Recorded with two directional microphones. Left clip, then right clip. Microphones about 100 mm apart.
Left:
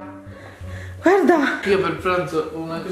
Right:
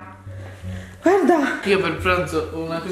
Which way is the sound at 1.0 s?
Centre (ahead or behind).